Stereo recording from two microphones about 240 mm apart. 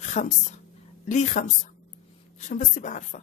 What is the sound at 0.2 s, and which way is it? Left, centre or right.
A woman's voice, left.